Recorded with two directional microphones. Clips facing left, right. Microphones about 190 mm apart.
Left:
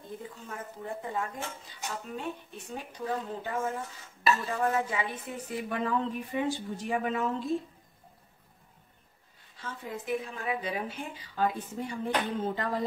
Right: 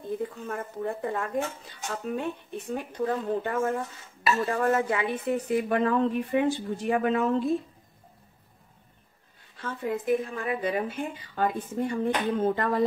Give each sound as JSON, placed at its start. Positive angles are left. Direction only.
{"t": 0.5, "sound": "a woman's voice", "side_deg": -60}
{"t": 9.6, "sound": "a woman's voice", "side_deg": -60}